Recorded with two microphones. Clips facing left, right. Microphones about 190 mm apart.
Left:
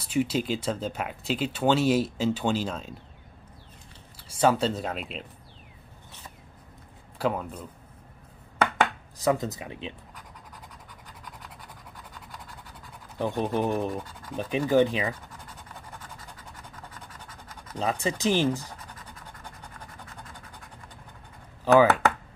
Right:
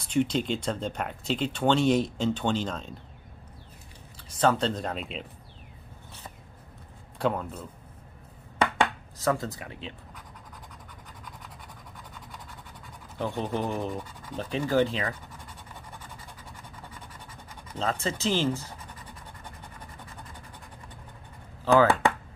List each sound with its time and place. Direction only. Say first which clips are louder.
0.0 s speech: even; 5° left (ahead or behind)
4.2 s speech: left 1 dB; 10° left (ahead or behind)
7.2 s speech: even; 5° left (ahead or behind)
9.2 s speech: left 2 dB; 15° left (ahead or behind)
12.3 s scratch: even; centre (ahead or behind)
13.2 s speech: left 3 dB; 15° left (ahead or behind)
17.7 s speech: left 2 dB; 15° left (ahead or behind)
21.7 s a sound: left 2 dB; 10° left (ahead or behind)